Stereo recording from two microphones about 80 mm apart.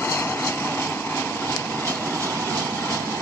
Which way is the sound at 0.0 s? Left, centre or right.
Left.